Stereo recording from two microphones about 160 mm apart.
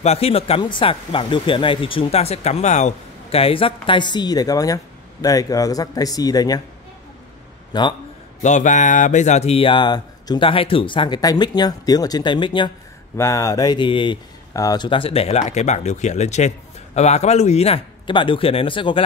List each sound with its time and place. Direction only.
0.0 s speech: 40° left (ahead or behind); by 6.6 s 25° left (ahead or behind)
7.7 s speech: 25° left (ahead or behind)
8.4 s speech: 50° left (ahead or behind); by 12.7 s 30° left (ahead or behind)
13.2 s speech: 20° left (ahead or behind)